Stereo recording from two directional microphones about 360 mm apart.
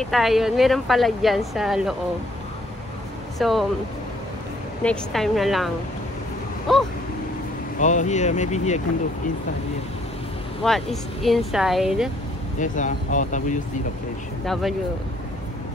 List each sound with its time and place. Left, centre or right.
0.0 s speech: centre
3.3 s speech: centre
4.8 s speech: centre
6.7 s speech: centre
7.8 s speech: centre
10.6 s speech: centre
12.5 s speech: left
14.4 s speech: centre